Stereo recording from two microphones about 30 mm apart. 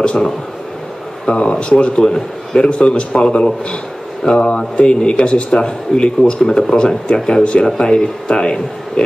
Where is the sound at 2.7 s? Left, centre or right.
Left.